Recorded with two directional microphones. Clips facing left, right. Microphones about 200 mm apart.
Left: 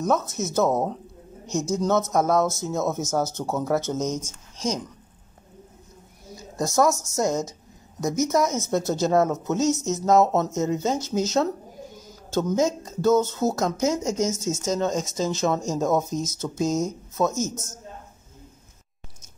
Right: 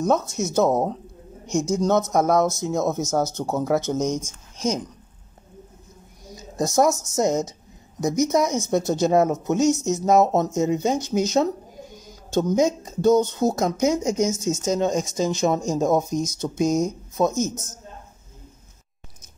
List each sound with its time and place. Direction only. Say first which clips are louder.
0.0 s speech: right 2 dB; 15° right (ahead or behind)
6.3 s speech: right 2 dB; 20° right (ahead or behind)